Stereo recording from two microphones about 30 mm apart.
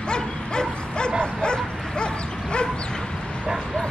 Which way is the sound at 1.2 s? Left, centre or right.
Left.